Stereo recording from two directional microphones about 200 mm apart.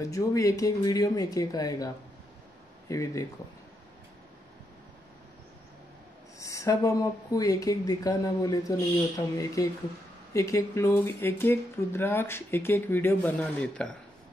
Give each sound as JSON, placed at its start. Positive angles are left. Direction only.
{"t": 0.0, "sound": "speech", "side_deg": 15}
{"t": 2.9, "sound": "speech", "side_deg": 15}
{"t": 6.4, "sound": "speech", "side_deg": 15}